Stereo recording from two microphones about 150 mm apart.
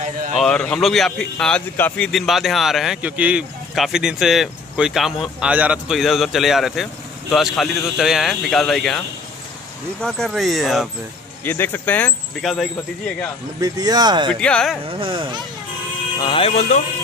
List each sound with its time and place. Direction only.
0.4 s speech: 5° left (ahead or behind)
1.8 s speech: 15° left (ahead or behind)
2.0 s speech: centre (ahead or behind)
11.4 s speech: 15° left (ahead or behind)
13.6 s speech: 25° right (ahead or behind)
14.4 s speech: 5° left (ahead or behind)
14.9 s speech: 35° right (ahead or behind)
16.2 s speech: 35° left (ahead or behind)